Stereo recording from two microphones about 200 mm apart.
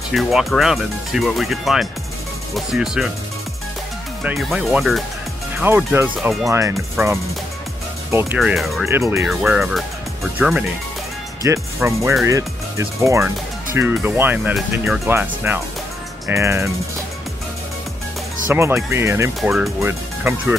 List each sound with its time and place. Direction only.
0.1 s speech: centre (ahead or behind)
4.2 s speech: 5° right (ahead or behind)
8.4 s speech: centre (ahead or behind)
8.8 s speech: 15° right (ahead or behind)
11.4 s speech: 15° right (ahead or behind)
18.5 s speech: 10° right (ahead or behind)